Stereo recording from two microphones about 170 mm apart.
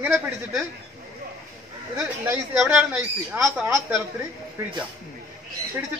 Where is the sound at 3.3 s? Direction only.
15° right (ahead or behind).